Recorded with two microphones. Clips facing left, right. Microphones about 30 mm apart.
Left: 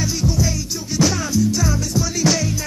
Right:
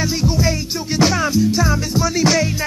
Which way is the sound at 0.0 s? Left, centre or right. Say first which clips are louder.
Right 3 dB; right.